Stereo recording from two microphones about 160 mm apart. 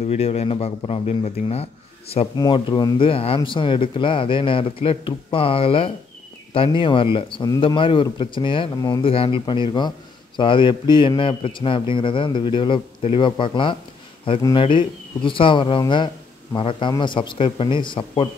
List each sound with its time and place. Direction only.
0.0 s speech: 40° left (ahead or behind)
2.3 s speech: 30° left (ahead or behind)